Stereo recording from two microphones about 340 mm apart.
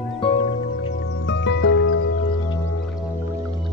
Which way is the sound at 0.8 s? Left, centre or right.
Left.